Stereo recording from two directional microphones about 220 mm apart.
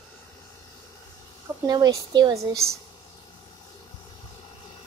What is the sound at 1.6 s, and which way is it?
Speech, 15° right (ahead or behind).